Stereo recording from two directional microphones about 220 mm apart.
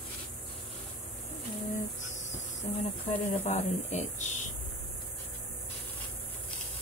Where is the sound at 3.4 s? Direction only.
30° left (ahead or behind).